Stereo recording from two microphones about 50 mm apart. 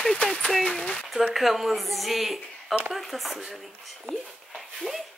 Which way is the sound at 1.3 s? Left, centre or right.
Centre.